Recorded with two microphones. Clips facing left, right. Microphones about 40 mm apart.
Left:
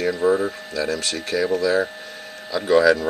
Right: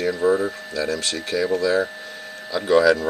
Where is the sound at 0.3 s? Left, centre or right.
Centre.